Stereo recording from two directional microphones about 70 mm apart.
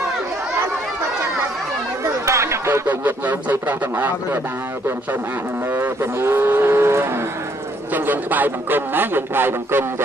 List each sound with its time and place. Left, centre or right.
2.2 s a sound: right
2.9 s a man's voice: right
5.7 s cattle: right
7.9 s a man's voice: right